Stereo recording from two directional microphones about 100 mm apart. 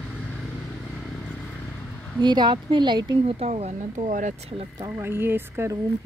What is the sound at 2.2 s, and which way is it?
Speech, 50° right (ahead or behind).